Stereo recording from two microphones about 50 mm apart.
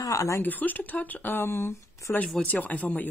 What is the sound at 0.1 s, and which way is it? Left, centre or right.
Speech, left.